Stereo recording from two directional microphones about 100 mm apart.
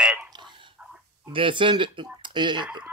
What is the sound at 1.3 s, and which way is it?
Speech, 60° right (ahead or behind).